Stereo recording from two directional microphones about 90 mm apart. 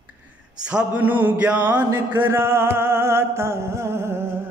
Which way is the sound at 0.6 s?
10° right (ahead or behind).